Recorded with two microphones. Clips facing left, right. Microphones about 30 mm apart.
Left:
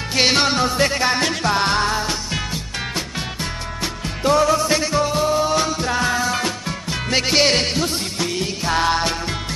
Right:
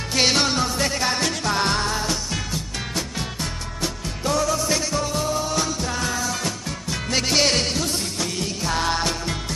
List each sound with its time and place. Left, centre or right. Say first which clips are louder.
0.1 s music: left 3 dB; left